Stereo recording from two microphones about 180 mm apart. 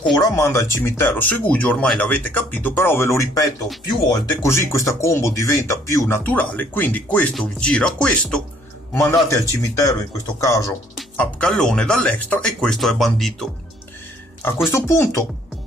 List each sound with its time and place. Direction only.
0.1 s speech: 15° left (ahead or behind)
9.3 s speech: 15° left (ahead or behind)
11.0 s speech: 5° left (ahead or behind)
14.7 s speech: 15° left (ahead or behind)